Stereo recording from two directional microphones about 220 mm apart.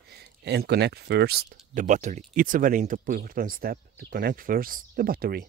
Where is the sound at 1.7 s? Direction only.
35° right (ahead or behind).